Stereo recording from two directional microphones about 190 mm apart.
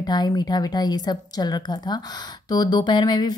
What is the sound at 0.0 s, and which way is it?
Speech, 20° left (ahead or behind).